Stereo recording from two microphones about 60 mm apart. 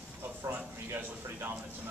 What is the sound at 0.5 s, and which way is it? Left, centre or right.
Speech, right.